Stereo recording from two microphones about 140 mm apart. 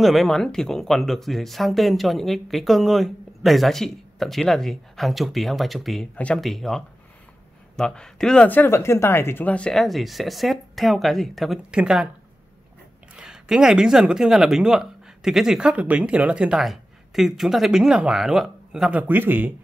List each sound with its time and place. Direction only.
0.0 s speech: centre (ahead or behind)
13.1 s speech: 5° right (ahead or behind)